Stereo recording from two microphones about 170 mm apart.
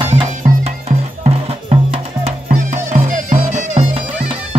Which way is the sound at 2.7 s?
45° right (ahead or behind).